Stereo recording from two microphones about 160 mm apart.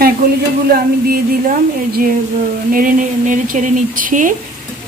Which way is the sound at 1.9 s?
60° right (ahead or behind).